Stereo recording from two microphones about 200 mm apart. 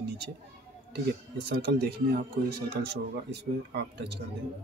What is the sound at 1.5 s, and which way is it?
Speech, 55° right (ahead or behind).